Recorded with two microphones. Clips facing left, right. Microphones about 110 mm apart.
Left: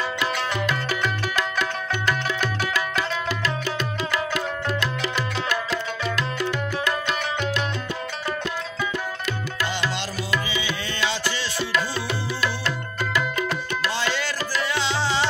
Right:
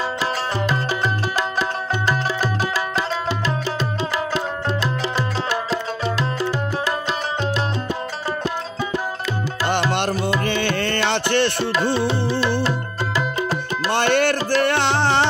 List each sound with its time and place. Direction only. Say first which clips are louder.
0.2 s music: right 2 dB; 30° right (ahead or behind)
9.7 s music: right 11 dB; 60° right (ahead or behind)
12.1 s music: right 6 dB; 30° right (ahead or behind)
13.9 s music: right 9 dB; 60° right (ahead or behind)